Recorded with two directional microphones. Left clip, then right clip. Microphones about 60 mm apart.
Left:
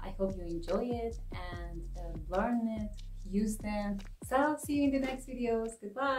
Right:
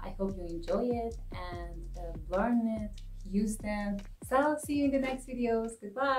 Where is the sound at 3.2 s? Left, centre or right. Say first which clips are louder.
Right 2 dB; centre.